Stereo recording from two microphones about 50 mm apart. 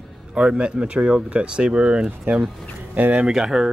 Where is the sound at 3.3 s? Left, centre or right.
Centre.